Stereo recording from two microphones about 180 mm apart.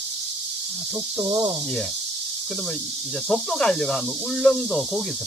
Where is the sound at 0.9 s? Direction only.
25° right (ahead or behind).